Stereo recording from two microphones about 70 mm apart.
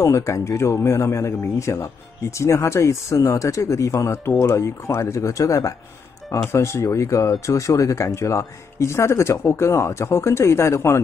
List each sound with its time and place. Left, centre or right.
0.0 s speech: left